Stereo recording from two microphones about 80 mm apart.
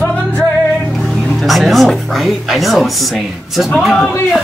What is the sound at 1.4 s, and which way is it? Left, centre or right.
A woman's voice, centre.